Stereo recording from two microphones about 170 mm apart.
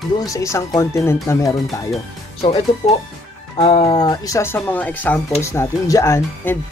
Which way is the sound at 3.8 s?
25° left (ahead or behind).